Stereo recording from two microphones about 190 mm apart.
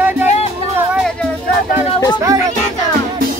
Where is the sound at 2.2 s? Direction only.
15° right (ahead or behind).